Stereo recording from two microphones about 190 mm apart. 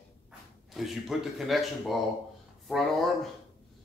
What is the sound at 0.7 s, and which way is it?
A man's voice, centre (ahead or behind).